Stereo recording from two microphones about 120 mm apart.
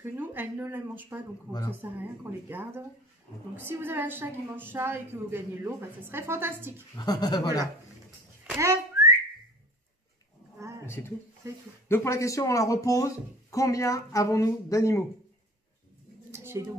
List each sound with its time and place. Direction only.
0.0 s a woman's voice: 15° right (ahead or behind)
3.5 s a woman's voice: 20° right (ahead or behind)
7.0 s speech: 35° left (ahead or behind)
8.5 s whistling: 25° right (ahead or behind)
11.4 s a woman's voice: 25° right (ahead or behind)
11.9 s speech: 25° left (ahead or behind)
16.3 s a sound: 20° right (ahead or behind)